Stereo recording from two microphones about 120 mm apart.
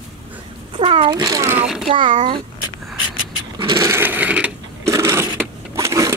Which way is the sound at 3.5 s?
30° right (ahead or behind).